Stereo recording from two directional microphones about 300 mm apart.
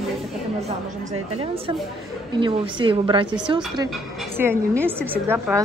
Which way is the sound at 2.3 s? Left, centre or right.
Centre.